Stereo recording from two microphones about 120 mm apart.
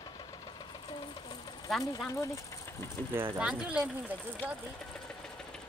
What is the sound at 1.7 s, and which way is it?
Speech, centre (ahead or behind).